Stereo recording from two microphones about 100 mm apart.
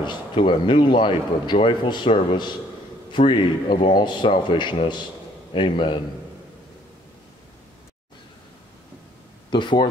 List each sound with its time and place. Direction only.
0.0 s a man's voice: 55° left (ahead or behind)
9.5 s a man's voice: 50° left (ahead or behind)